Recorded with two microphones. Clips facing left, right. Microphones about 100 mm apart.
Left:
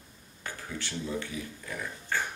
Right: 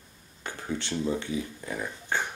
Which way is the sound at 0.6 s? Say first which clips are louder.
Right 8 dB; 25° right (ahead or behind).